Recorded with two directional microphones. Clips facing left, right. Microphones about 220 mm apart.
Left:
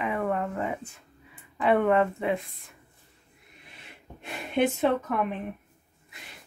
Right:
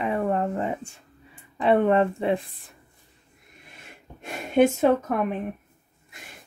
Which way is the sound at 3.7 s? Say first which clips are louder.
Right 1 dB; 45° right (ahead or behind).